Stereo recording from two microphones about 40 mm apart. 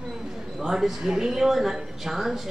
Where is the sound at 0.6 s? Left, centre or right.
Centre.